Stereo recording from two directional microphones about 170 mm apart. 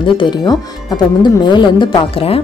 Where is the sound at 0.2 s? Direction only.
25° left (ahead or behind).